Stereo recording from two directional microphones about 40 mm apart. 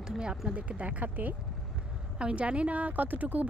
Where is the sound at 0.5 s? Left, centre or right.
Right.